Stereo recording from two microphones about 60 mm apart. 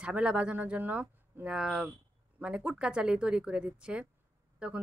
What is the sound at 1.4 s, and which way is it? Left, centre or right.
Speech, centre.